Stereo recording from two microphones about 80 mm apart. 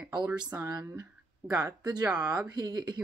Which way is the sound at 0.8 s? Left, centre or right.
Right.